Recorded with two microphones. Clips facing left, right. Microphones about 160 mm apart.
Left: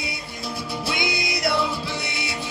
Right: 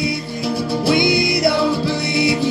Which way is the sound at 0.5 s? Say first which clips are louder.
Right 12 dB; 35° right (ahead or behind).